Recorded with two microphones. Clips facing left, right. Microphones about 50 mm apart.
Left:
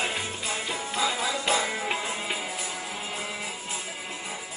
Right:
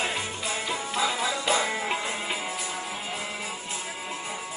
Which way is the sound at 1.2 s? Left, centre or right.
Centre.